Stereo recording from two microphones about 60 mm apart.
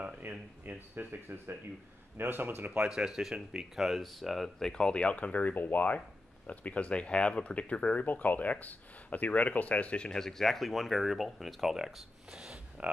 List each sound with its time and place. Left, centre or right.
0.2 s speech: right
2.9 s speech: centre
12.8 s speech: right